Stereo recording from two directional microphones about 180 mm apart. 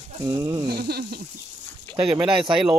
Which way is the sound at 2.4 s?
25° right (ahead or behind).